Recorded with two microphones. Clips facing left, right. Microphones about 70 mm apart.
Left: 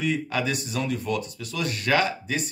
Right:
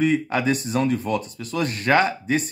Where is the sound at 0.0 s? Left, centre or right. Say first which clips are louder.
Right 6 dB; right.